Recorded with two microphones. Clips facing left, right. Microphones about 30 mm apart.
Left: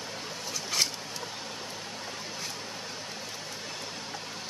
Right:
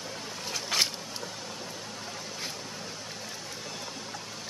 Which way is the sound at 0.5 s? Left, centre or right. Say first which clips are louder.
Right 2 dB; right.